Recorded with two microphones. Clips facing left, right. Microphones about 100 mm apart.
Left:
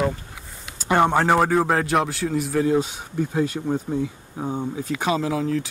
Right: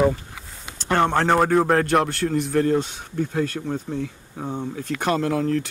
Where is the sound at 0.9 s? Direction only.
10° left (ahead or behind).